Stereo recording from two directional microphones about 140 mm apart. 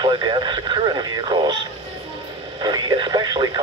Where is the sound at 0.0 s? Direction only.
35° right (ahead or behind).